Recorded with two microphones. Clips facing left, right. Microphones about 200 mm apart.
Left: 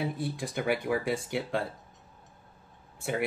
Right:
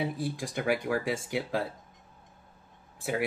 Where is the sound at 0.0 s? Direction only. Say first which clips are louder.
Right 1 dB; centre (ahead or behind).